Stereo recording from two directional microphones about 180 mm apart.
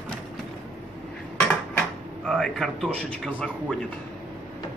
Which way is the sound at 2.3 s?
Centre (ahead or behind).